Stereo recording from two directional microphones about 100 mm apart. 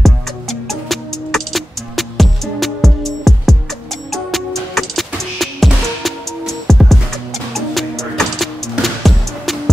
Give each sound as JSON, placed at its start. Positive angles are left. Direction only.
{"t": 0.0, "sound": "music", "side_deg": 0}